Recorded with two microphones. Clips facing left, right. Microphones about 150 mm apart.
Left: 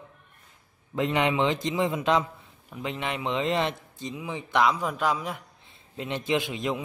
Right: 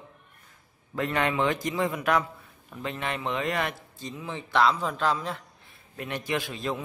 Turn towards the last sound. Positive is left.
turn(degrees=20)  # may be behind; listen again after turning